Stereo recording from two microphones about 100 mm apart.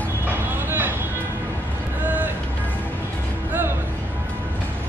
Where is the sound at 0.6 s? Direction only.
20° right (ahead or behind).